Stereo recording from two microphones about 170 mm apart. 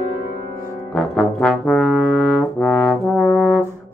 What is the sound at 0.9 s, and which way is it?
Brass instrument, 5° left (ahead or behind).